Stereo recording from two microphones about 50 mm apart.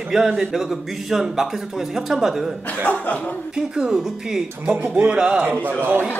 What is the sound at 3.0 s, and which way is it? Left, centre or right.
Speech, left.